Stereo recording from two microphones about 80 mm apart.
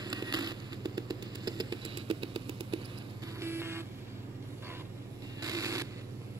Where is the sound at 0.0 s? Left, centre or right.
Right.